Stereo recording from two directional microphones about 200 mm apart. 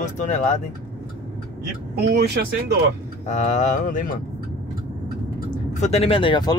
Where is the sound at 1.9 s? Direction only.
55° right (ahead or behind).